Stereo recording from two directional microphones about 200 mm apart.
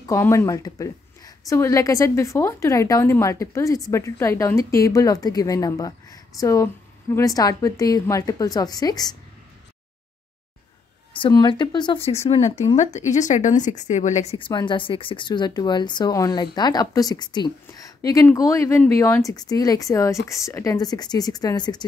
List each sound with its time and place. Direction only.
0.0 s a woman's voice: 15° left (ahead or behind)
11.1 s a woman's voice: 25° left (ahead or behind)